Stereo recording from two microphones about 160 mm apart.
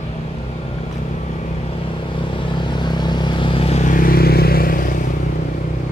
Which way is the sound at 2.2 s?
30° left (ahead or behind).